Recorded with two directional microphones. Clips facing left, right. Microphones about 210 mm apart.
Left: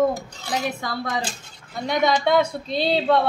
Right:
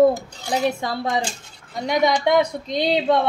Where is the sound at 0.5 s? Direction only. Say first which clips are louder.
Right 4 dB; 25° right (ahead or behind).